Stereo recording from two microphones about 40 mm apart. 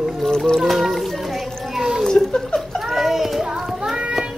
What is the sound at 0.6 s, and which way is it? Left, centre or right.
Music, centre.